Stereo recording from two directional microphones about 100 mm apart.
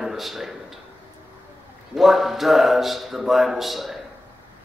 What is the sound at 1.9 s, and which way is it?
A man's voice, 5° right (ahead or behind).